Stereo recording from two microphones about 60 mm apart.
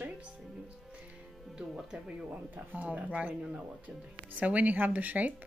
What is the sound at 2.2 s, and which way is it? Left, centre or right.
Speech, right.